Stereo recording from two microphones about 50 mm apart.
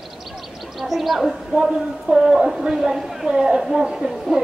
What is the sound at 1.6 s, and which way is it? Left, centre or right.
Speech, centre.